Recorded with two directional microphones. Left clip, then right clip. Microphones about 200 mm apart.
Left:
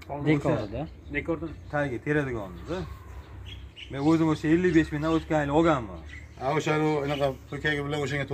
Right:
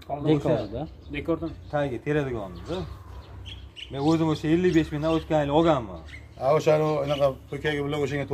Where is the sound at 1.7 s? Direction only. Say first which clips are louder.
Right 1 dB; centre (ahead or behind).